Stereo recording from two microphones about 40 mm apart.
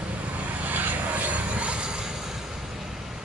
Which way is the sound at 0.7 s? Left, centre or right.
Right.